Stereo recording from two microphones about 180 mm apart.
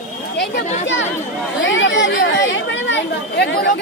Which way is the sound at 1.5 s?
90° left.